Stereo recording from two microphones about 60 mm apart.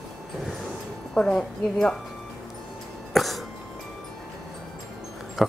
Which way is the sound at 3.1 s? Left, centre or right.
Centre.